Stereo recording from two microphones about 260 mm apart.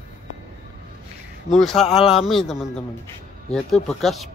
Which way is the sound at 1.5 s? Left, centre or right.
Centre.